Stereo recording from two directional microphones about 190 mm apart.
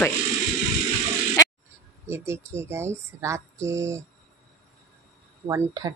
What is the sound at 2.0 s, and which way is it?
Speech, 15° right (ahead or behind).